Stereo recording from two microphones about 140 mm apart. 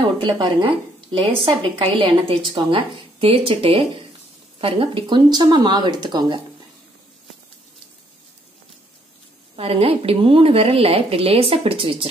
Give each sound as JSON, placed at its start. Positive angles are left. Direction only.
{"t": 0.2, "sound": "a woman's voice", "side_deg": -35}
{"t": 9.6, "sound": "speech", "side_deg": -45}